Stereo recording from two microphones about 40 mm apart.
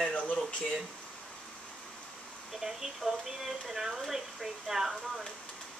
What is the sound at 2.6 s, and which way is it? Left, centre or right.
Speech, centre.